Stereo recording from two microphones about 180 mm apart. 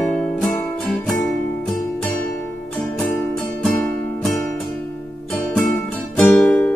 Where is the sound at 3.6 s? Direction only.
Centre (ahead or behind).